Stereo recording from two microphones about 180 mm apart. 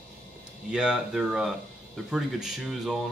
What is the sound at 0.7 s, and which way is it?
Speech, 5° right (ahead or behind).